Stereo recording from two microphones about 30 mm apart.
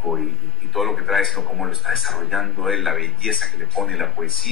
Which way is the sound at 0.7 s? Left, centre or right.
Centre.